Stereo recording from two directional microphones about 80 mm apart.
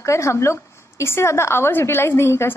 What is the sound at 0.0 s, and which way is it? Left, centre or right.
A woman's voice, left.